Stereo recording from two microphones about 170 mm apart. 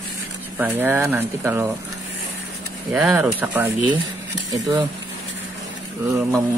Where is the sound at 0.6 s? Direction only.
10° right (ahead or behind).